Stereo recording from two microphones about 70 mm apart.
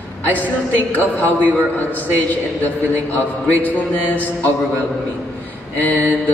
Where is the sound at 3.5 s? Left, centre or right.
Left.